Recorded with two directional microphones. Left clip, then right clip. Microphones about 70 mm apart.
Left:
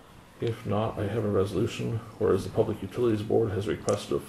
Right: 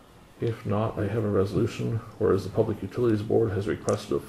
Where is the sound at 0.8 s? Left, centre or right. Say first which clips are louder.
Right 1 dB; centre.